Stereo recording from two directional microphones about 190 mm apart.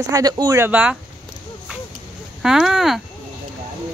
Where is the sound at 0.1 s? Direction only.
20° right (ahead or behind).